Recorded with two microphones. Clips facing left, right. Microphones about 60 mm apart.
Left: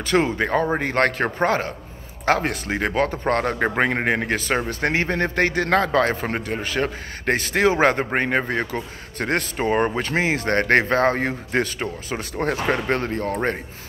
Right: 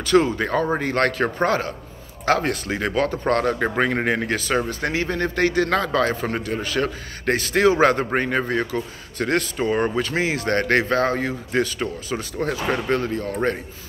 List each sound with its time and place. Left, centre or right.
0.0 s a man's voice: left
4.6 s a man's voice: left
12.6 s speech: left